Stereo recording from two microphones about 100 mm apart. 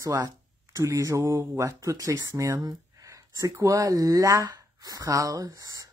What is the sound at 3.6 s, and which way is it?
Speech, 40° right (ahead or behind).